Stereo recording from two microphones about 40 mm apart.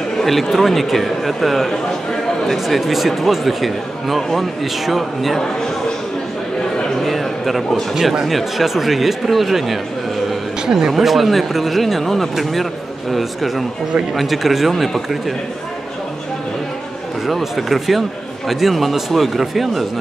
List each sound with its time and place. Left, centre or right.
0.2 s speech: centre
7.0 s a sound: centre
7.9 s speech: centre
17.6 s speech: centre